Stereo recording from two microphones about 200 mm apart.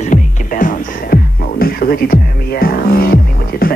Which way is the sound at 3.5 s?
45° left (ahead or behind).